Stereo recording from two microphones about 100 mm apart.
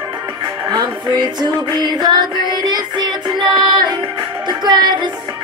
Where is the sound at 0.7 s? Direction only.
45° right (ahead or behind).